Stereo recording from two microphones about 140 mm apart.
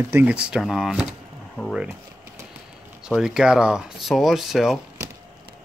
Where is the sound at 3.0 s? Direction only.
5° right (ahead or behind).